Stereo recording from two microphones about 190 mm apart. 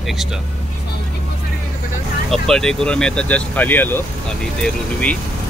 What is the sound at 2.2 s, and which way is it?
Speech, centre (ahead or behind).